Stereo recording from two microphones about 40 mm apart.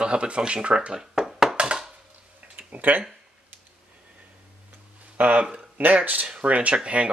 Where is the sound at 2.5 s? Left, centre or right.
Right.